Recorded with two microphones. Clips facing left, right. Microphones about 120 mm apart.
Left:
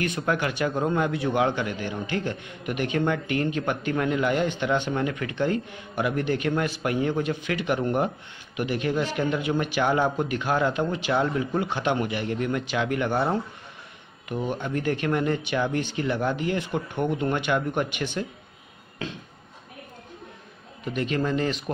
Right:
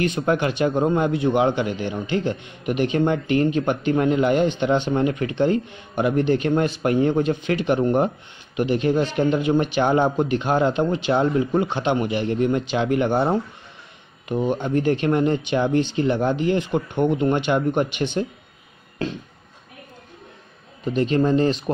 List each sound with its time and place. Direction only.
0.0 s speech: 25° right (ahead or behind)
20.8 s speech: 30° right (ahead or behind)